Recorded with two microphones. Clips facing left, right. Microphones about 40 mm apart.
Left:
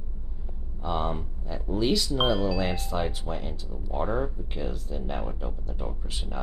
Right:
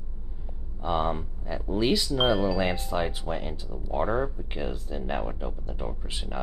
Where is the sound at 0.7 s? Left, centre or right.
Centre.